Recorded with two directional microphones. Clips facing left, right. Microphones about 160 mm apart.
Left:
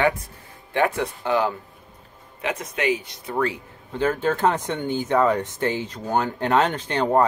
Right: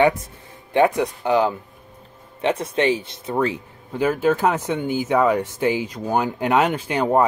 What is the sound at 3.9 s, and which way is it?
Speech, 10° right (ahead or behind).